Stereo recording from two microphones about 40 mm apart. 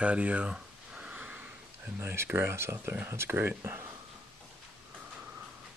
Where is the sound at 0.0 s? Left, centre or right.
Right.